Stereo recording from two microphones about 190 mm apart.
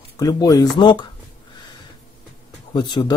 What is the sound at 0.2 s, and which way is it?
Speech, 20° left (ahead or behind).